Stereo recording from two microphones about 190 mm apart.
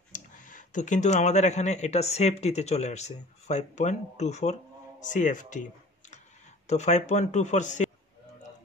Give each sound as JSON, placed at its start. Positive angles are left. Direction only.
{"t": 0.1, "sound": "speech", "side_deg": 45}